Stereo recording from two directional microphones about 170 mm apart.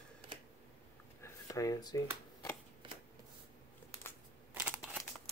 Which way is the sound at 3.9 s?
15° left (ahead or behind).